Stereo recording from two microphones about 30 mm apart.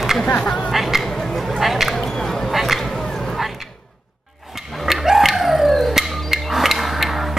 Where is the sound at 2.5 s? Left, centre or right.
Centre.